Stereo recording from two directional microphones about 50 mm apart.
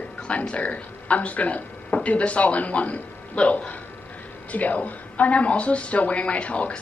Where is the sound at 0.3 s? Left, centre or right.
Left.